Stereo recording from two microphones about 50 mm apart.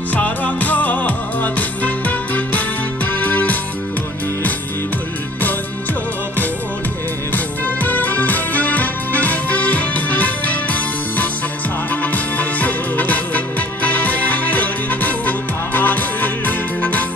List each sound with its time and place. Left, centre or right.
0.1 s music: left
7.3 s music: left